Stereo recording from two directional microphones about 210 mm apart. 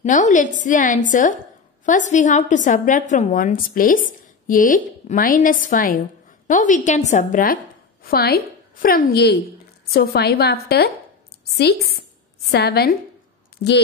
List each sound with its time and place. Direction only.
0.0 s a woman's voice: 35° left (ahead or behind)
12.4 s a woman's voice: 50° left (ahead or behind)